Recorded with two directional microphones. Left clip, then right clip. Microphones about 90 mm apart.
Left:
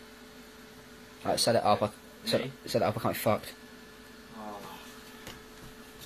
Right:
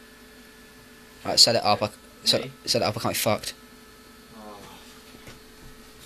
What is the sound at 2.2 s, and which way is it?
Speech, 25° right (ahead or behind).